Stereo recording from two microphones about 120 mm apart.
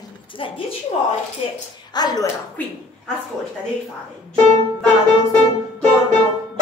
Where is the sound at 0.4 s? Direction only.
50° left (ahead or behind).